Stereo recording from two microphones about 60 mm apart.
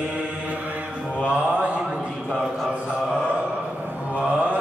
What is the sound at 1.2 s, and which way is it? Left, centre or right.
Mantra, right.